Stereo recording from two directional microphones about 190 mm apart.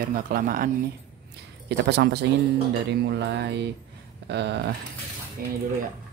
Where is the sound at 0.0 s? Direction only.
50° right (ahead or behind).